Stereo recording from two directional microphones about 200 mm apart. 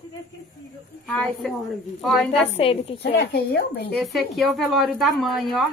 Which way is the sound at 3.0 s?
55° left (ahead or behind).